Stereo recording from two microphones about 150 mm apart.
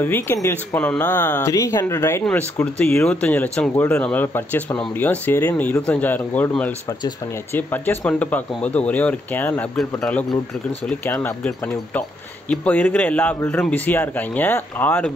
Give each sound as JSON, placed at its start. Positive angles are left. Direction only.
{"t": 0.0, "sound": "a man's voice", "side_deg": 15}
{"t": 7.5, "sound": "a man's voice", "side_deg": 15}